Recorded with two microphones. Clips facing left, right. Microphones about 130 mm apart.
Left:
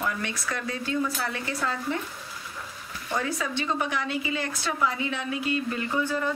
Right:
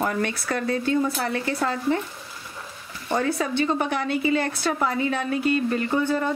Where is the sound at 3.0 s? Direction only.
35° right (ahead or behind).